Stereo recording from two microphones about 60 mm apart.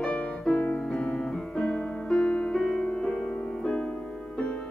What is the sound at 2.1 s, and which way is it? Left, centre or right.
Music, centre.